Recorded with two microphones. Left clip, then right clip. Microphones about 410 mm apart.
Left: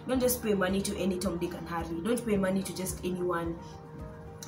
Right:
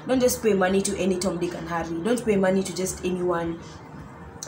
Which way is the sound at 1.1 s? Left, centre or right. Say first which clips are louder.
Right 7 dB; left.